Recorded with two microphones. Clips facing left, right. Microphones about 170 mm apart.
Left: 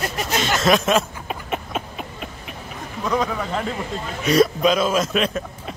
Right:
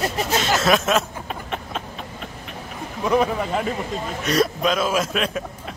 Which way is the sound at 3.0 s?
10° right (ahead or behind).